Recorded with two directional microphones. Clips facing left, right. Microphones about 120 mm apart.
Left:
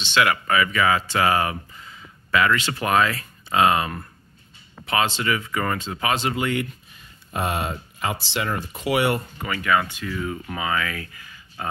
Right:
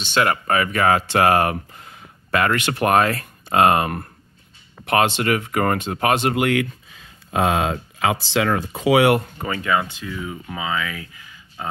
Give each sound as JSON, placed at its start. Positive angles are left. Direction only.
{"t": 0.0, "sound": "speech", "side_deg": -45}
{"t": 9.4, "sound": "speech", "side_deg": -25}